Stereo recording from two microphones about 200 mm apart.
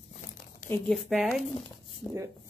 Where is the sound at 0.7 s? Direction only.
Centre (ahead or behind).